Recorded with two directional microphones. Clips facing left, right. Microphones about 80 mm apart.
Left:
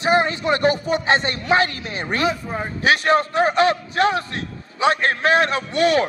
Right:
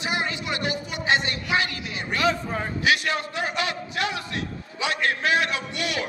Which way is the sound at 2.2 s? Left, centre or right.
Centre.